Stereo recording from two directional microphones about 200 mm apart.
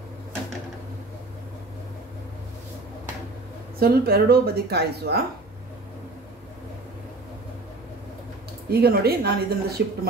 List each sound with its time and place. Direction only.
3.8 s a woman's voice: 50° right (ahead or behind)
8.6 s a woman's voice: 50° right (ahead or behind)